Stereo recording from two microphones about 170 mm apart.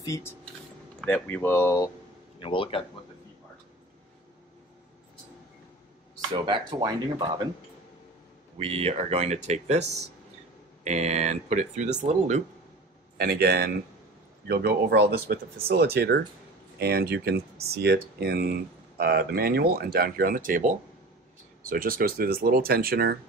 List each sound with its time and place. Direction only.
0.0 s speech: 20° left (ahead or behind)
2.4 s speech: 30° left (ahead or behind)
6.3 s speech: 25° right (ahead or behind)
8.5 s speech: 35° right (ahead or behind)
13.2 s speech: 70° right (ahead or behind)